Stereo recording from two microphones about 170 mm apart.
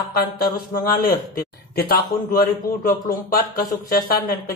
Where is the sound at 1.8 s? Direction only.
60° left (ahead or behind).